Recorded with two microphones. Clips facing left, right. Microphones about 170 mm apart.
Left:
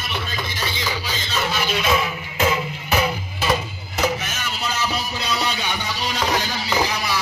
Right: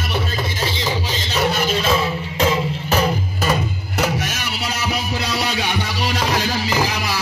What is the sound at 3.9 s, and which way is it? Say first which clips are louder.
Music: right 1 dB; 75° right (ahead or behind).